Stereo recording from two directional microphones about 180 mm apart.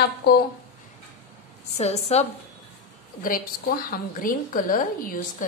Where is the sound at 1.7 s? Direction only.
35° left (ahead or behind).